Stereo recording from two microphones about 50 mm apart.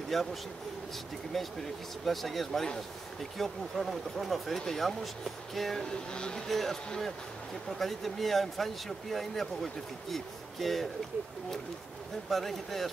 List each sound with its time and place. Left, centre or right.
0.1 s speech: centre
6.1 s speech: centre
6.4 s speech: centre
7.8 s speech: centre
12.3 s speech: centre